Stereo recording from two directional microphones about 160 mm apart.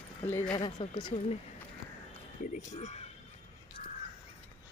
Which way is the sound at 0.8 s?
30° left (ahead or behind).